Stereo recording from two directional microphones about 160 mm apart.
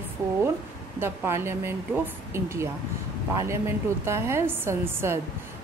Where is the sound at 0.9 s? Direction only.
15° right (ahead or behind).